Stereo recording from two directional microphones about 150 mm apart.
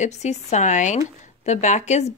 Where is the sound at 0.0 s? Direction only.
50° left (ahead or behind).